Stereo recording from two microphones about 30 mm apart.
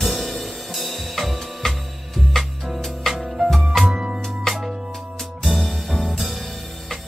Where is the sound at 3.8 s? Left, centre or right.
Right.